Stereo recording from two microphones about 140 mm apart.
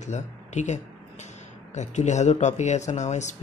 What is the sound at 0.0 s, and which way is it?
Speech, 55° left (ahead or behind).